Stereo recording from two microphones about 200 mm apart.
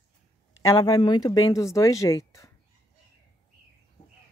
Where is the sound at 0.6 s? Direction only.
20° left (ahead or behind).